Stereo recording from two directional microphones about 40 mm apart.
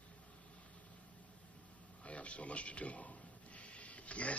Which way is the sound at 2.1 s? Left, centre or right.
Left.